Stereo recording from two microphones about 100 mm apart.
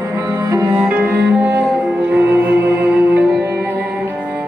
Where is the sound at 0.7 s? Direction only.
15° right (ahead or behind).